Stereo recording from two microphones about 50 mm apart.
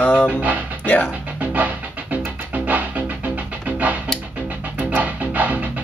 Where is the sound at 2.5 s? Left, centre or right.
Right.